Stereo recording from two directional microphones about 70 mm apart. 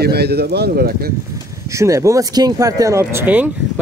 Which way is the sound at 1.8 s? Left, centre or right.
Right.